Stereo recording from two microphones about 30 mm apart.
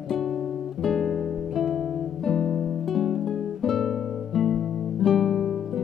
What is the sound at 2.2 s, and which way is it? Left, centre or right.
Guitar, centre.